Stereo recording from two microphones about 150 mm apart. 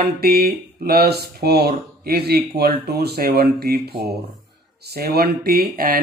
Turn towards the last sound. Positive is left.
turn(degrees=-80)